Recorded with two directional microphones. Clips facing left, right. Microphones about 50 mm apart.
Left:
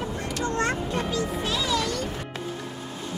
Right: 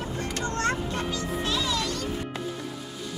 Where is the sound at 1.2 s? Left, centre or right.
Centre.